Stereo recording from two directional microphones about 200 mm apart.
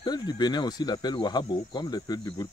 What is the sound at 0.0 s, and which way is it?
Speech, 20° left (ahead or behind).